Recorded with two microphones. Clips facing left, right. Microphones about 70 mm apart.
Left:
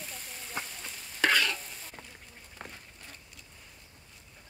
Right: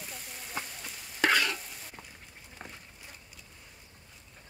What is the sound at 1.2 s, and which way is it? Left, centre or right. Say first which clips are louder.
Stir: even; right.